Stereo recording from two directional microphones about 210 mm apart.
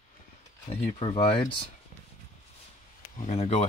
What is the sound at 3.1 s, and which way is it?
Speech, 35° left (ahead or behind).